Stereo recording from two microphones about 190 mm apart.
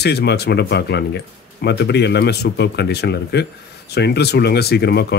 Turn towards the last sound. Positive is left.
turn(degrees=60)  # may be behind; listen again after turning